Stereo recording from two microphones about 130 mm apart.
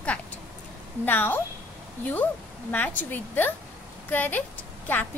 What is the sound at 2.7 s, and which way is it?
A woman's voice, 10° left (ahead or behind).